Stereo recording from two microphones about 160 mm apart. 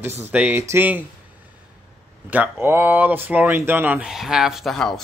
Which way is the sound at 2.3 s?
10° right (ahead or behind).